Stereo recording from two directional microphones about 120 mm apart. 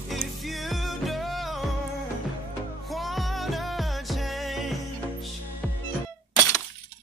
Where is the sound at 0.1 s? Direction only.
Centre (ahead or behind).